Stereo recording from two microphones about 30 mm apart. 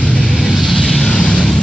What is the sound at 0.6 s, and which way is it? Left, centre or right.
Vehicle, centre.